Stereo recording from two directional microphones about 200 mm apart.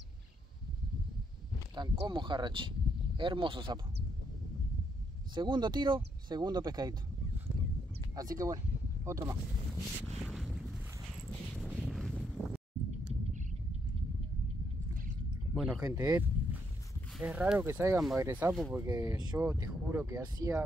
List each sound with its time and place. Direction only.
1.8 s speech: 20° right (ahead or behind)
5.3 s speech: 20° right (ahead or behind)
8.2 s speech: 15° right (ahead or behind)
10.0 s boat: centre (ahead or behind)
15.5 s a sound: centre (ahead or behind)
15.8 s speech: 15° right (ahead or behind)